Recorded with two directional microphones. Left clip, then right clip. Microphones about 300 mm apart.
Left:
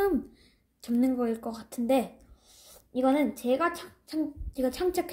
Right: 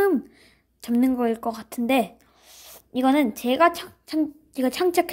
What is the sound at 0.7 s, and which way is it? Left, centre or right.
A woman's voice, right.